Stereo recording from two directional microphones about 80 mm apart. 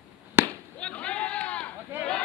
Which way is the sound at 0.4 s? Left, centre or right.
Right.